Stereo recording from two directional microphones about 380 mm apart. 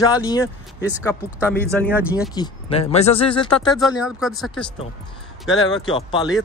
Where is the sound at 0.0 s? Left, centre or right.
Centre.